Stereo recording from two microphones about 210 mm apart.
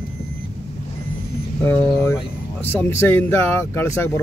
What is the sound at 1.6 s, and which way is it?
Speech, 10° left (ahead or behind).